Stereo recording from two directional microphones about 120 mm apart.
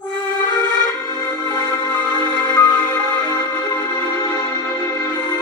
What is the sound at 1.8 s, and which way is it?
Music, 35° left (ahead or behind).